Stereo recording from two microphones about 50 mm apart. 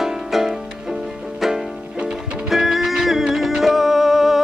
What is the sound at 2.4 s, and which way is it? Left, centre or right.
Music, centre.